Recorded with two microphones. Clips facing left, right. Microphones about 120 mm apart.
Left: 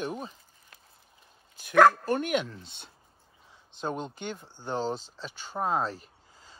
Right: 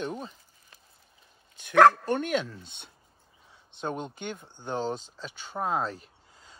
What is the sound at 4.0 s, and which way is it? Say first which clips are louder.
Speech: even; 15° right (ahead or behind).